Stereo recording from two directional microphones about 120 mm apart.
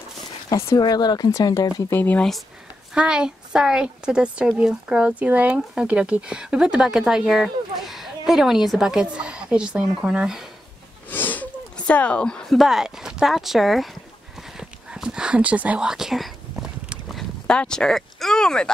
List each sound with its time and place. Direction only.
0.5 s speech: 25° left (ahead or behind)
0.7 s speech: 35° left (ahead or behind)
1.9 s speech: 15° left (ahead or behind)
2.9 s speech: 5° right (ahead or behind)
11.1 s speech: 15° left (ahead or behind); by 13.9 s centre (ahead or behind)
14.6 s a sound: 5° right (ahead or behind)